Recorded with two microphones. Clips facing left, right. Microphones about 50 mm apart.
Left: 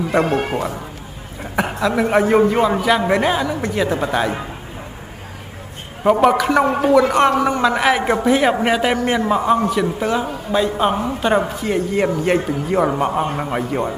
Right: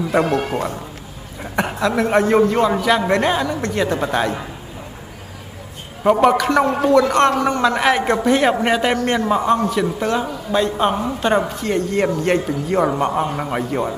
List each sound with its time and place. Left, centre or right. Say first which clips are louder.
0.4 s speech: left 1 dB; left
1.4 s a man's voice: even; centre
6.0 s a woman's voice: even; centre